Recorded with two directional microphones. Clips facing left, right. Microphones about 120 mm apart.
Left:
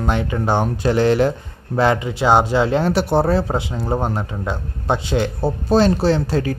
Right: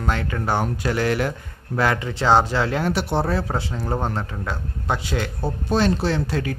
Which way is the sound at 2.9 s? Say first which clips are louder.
Left 6 dB; 40° left (ahead or behind).